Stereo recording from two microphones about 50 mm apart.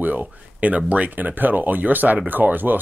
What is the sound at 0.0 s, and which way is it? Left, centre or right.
Speech, right.